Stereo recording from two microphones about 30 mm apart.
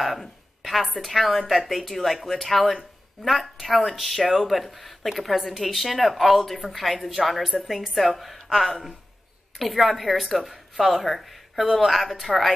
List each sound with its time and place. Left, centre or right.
1.0 s a woman's voice: centre